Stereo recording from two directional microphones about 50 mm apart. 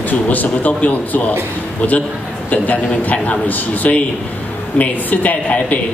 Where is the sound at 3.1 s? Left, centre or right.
Left.